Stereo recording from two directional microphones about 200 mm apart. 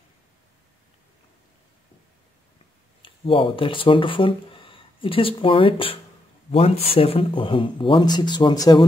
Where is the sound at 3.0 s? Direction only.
25° left (ahead or behind).